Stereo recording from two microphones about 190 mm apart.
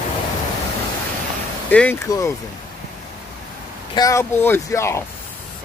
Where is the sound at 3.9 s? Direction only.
15° left (ahead or behind).